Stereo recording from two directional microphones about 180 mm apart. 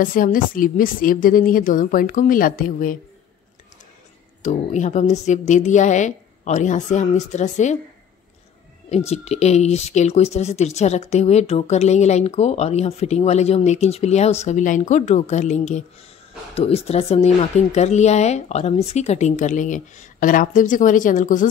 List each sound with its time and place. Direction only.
0.0 s speech: 50° left (ahead or behind)
4.4 s speech: 40° left (ahead or behind)
8.8 s speech: 35° left (ahead or behind)